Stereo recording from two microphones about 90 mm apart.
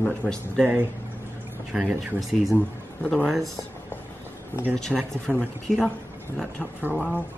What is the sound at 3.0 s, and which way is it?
Speech, 15° left (ahead or behind).